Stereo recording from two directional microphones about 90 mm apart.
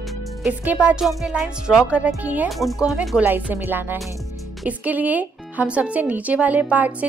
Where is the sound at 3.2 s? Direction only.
20° right (ahead or behind).